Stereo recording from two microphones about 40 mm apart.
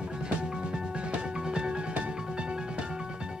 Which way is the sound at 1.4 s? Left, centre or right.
Centre.